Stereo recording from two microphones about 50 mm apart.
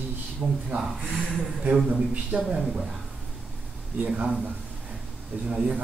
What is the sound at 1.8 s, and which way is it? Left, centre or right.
Speech, centre.